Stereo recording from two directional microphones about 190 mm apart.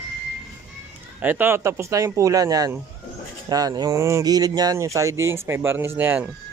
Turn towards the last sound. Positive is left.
turn(degrees=-10)  # may be behind; listen again after turning